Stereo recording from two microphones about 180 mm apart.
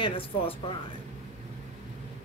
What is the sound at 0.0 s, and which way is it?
Speech, 30° left (ahead or behind).